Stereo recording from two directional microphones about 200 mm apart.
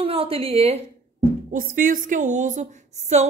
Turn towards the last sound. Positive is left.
turn(degrees=-35)  # may be behind; listen again after turning